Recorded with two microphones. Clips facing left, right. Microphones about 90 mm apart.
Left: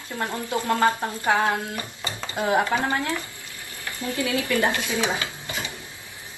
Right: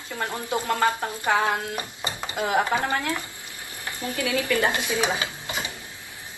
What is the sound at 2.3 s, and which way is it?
Speech, 20° left (ahead or behind).